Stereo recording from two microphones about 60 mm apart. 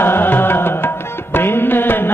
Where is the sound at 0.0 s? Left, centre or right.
Left.